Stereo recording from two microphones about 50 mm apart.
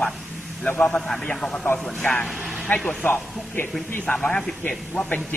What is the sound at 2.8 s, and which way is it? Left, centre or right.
Speech, centre.